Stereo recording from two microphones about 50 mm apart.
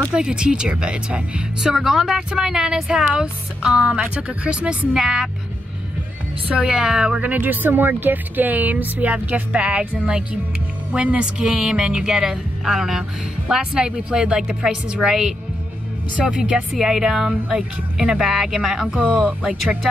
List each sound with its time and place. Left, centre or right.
0.1 s speech: centre
1.6 s speech: centre; by 4.7 s right
4.9 s speech: centre
6.6 s speech: centre
7.2 s speech: right; by 17.3 s centre
17.5 s speech: centre
18.1 s speech: centre
18.9 s speech: right